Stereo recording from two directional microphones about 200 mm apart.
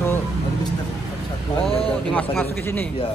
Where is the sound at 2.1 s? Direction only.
5° left (ahead or behind).